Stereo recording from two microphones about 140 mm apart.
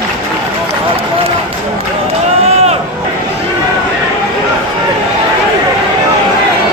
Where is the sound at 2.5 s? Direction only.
50° right (ahead or behind).